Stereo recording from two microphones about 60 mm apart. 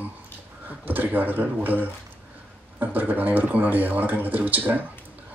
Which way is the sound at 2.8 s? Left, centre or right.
Right.